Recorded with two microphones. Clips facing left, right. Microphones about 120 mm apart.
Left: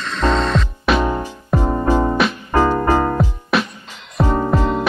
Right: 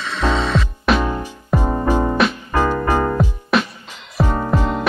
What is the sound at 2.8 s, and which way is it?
Music, 15° right (ahead or behind).